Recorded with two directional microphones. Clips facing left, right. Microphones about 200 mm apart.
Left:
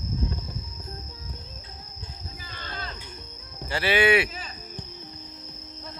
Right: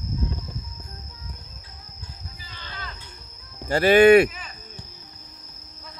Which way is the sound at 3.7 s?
45° right (ahead or behind).